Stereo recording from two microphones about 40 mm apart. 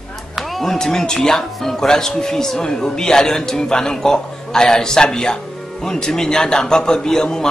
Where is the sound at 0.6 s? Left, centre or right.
Centre.